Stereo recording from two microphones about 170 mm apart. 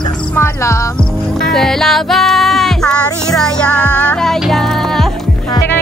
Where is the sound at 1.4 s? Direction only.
Centre (ahead or behind).